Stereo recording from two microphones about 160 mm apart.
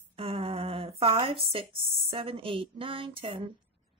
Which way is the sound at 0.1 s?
35° right (ahead or behind).